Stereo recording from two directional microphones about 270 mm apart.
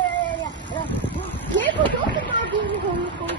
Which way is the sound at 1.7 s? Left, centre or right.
Centre.